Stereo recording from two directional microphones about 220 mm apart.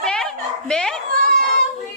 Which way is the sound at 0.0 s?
5° left (ahead or behind).